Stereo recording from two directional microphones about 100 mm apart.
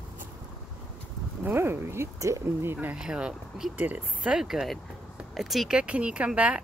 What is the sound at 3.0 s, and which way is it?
Speech, 10° right (ahead or behind).